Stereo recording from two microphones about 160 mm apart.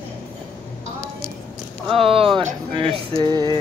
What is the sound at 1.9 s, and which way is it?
Music, 35° right (ahead or behind).